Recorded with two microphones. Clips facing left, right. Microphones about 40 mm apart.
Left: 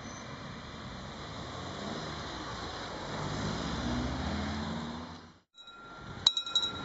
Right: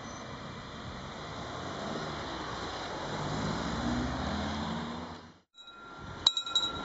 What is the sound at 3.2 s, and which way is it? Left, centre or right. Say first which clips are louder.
Vehicle: right 1 dB; centre.